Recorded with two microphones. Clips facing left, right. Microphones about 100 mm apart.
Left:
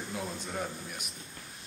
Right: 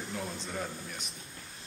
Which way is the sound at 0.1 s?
5° left (ahead or behind).